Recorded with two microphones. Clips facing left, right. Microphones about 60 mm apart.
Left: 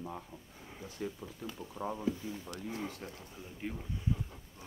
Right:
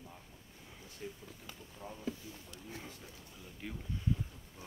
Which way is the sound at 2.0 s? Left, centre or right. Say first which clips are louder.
Left 7 dB; left.